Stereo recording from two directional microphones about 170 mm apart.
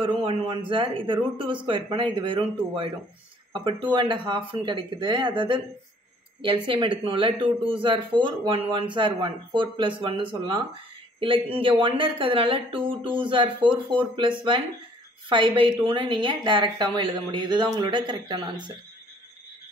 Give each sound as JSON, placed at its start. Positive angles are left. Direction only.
{"t": 0.0, "sound": "a man's voice", "side_deg": -35}
{"t": 15.2, "sound": "a woman's voice", "side_deg": -30}